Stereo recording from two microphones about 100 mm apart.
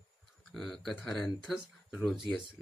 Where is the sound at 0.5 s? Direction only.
Centre (ahead or behind).